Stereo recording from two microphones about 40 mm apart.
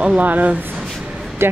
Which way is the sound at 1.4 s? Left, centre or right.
Right.